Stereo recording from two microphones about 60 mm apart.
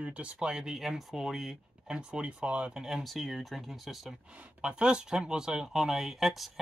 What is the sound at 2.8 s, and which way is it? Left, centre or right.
Speech, centre.